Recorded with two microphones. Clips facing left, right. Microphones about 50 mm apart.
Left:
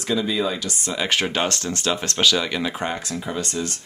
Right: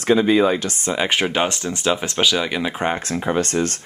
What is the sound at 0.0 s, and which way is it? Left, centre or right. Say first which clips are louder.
Speech: right 7 dB; right.